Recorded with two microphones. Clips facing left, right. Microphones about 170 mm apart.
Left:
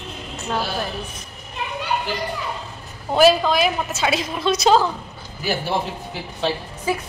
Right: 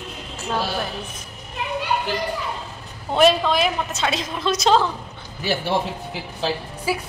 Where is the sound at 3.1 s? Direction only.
5° left (ahead or behind).